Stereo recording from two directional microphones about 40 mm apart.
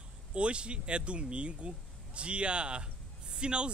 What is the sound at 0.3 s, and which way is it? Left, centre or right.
Speech, right.